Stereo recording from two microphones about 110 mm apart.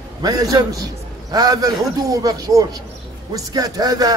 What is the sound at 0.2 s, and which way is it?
A man's voice, 35° right (ahead or behind).